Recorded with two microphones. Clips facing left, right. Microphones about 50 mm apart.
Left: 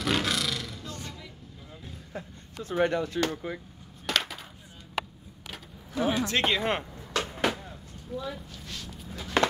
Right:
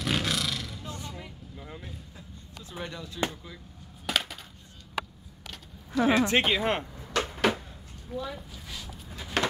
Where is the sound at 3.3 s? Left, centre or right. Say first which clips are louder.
Left 10 dB; left.